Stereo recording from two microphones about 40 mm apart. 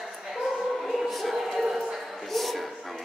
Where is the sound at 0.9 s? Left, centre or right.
Centre.